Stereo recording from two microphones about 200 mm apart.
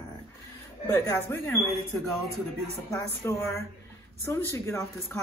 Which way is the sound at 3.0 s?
15° left (ahead or behind).